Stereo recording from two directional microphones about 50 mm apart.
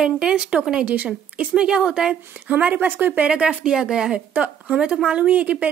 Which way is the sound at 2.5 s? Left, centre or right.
Right.